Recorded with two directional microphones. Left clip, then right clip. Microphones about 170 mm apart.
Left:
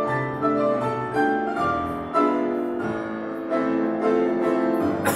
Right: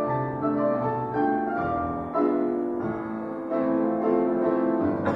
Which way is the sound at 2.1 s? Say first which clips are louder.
Left 3 dB; 25° left (ahead or behind).